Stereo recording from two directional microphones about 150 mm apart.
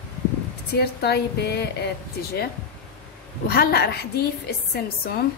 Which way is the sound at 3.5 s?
90° left.